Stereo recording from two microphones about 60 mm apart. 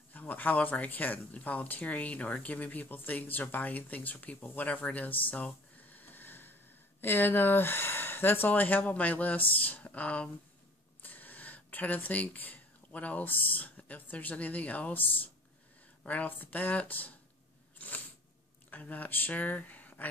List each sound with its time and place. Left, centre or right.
0.1 s speech: left
17.7 s a sound: left
18.7 s speech: left